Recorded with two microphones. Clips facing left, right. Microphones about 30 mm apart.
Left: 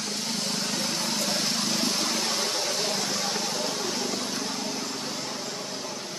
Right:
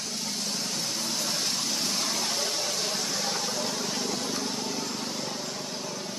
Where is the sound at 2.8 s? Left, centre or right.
Centre.